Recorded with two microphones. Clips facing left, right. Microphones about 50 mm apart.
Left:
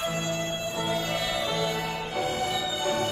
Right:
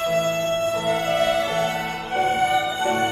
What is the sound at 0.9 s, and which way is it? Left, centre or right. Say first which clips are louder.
Music: right 8 dB; right.